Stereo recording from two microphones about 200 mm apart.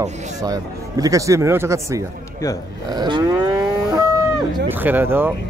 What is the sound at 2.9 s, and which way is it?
Moo, 20° right (ahead or behind).